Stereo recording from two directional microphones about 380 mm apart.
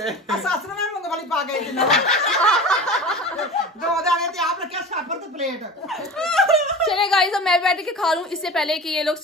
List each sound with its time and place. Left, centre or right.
0.0 s speech: centre
3.9 s a sound: centre
6.1 s a woman's voice: centre